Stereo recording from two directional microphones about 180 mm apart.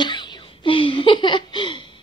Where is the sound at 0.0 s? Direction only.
25° left (ahead or behind).